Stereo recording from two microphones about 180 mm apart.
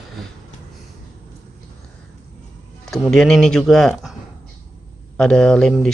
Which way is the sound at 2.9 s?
5° left (ahead or behind).